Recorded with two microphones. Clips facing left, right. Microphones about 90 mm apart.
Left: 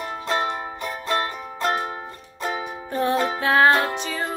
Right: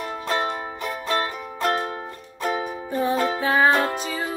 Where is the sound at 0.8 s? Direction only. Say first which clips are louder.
Even; centre (ahead or behind).